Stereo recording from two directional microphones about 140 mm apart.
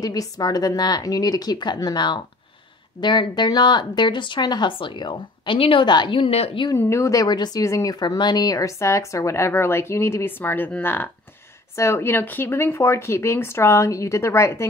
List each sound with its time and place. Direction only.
0.0 s speech: 25° left (ahead or behind)
6.7 s speech: 20° left (ahead or behind)